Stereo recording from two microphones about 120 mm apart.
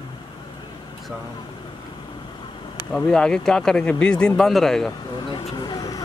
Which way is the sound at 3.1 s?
5° left (ahead or behind).